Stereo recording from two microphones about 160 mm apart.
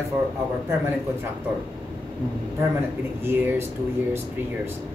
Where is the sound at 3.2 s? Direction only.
15° right (ahead or behind).